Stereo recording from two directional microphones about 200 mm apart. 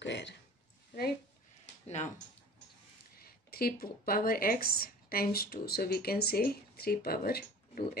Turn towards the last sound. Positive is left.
turn(degrees=50)  # may be behind; listen again after turning